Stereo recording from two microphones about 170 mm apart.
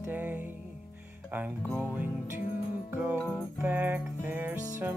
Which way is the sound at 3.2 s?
10° left (ahead or behind).